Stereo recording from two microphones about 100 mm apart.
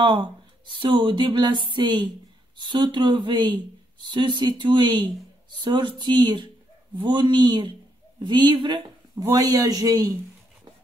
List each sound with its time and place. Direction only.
0.0 s speech: 50° right (ahead or behind)
9.1 s speech: 25° right (ahead or behind)
9.4 s a man's voice: 35° right (ahead or behind)